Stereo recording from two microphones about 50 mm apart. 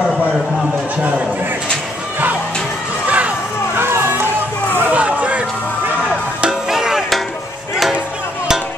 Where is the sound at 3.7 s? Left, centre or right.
Right.